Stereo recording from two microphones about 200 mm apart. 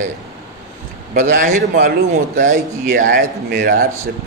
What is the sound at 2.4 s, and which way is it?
A man's voice, 40° right (ahead or behind).